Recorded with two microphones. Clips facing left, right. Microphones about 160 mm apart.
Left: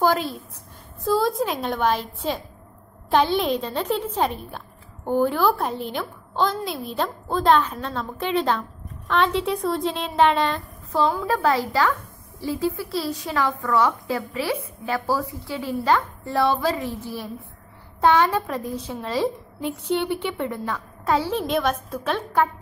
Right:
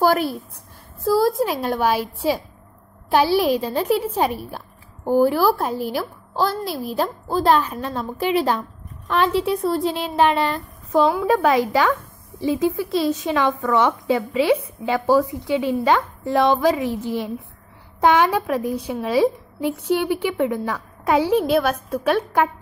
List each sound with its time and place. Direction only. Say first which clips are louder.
0.0 s a woman's voice: right 3 dB; 10° right (ahead or behind)
10.9 s a woman's voice: right 5 dB; 15° right (ahead or behind)